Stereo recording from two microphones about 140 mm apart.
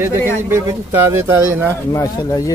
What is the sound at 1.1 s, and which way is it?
Speech, 15° right (ahead or behind).